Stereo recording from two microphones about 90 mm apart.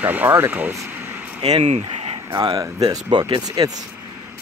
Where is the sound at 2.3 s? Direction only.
45° right (ahead or behind).